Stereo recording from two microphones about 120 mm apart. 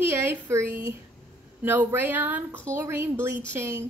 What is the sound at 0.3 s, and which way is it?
A woman's voice, 20° right (ahead or behind).